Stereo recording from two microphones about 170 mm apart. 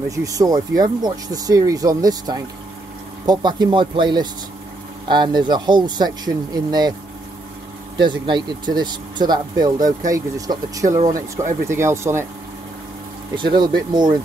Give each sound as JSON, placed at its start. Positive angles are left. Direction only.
{"t": 0.1, "sound": "speech", "side_deg": -20}
{"t": 8.0, "sound": "speech", "side_deg": -25}
{"t": 13.3, "sound": "speech", "side_deg": -25}